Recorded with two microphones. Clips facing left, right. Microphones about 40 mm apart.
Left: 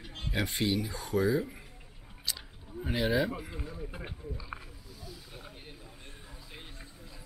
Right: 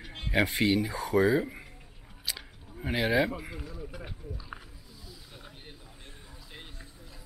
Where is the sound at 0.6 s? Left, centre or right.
Right.